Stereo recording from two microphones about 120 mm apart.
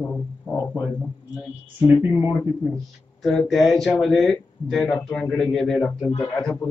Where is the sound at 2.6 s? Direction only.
5° right (ahead or behind).